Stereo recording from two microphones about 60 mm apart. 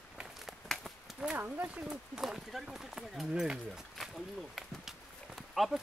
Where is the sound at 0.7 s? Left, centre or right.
Centre.